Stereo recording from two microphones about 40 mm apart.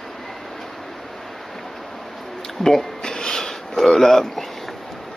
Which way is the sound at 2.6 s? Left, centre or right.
Centre.